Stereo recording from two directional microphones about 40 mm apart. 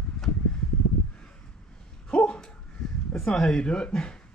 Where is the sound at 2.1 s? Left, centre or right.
Left.